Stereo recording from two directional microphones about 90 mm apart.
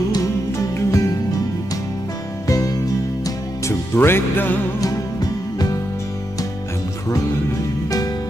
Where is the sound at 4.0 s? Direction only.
25° left (ahead or behind).